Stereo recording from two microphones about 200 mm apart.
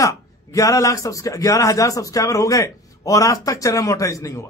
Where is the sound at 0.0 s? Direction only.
15° left (ahead or behind).